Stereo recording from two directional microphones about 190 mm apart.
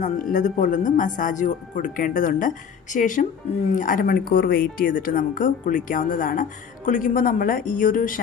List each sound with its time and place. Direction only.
0.0 s speech: 40° left (ahead or behind)